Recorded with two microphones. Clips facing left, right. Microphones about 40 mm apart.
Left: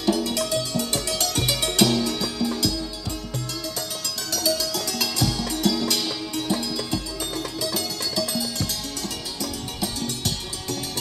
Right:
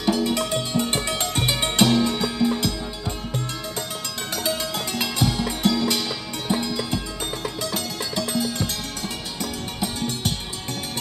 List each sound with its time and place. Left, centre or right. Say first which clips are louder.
0.0 s music: right 1 dB; right
4.3 s music: left 1 dB; right